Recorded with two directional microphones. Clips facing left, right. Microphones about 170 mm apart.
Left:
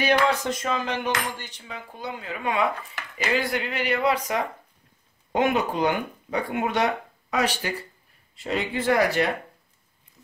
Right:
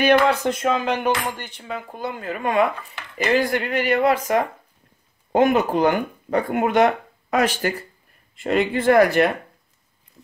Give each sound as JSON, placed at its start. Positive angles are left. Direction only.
{"t": 0.0, "sound": "dishes", "side_deg": -55}
{"t": 3.4, "sound": "speech", "side_deg": -45}